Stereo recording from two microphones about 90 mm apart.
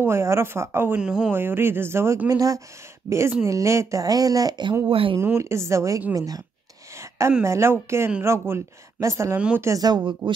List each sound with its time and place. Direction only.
0.0 s speech: 30° right (ahead or behind)
1.0 s speech: 10° right (ahead or behind)
1.3 s speech: 25° right (ahead or behind)
2.2 s speech: 40° right (ahead or behind)
4.8 s speech: 80° right
5.2 s speech: 30° right (ahead or behind)
7.0 s a sound: 35° right (ahead or behind)
7.4 s speech: 30° right (ahead or behind)
9.8 s a woman's voice: 50° right (ahead or behind)